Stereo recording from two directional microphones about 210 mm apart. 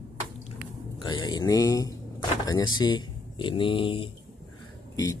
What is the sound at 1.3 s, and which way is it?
Speech, 15° left (ahead or behind).